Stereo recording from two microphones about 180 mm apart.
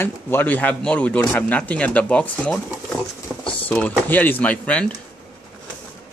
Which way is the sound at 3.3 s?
5° right (ahead or behind).